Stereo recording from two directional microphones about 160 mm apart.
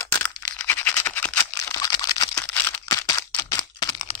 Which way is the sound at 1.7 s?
20° left (ahead or behind).